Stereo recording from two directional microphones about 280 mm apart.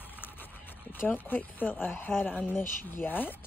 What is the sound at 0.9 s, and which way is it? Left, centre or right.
Speech, centre.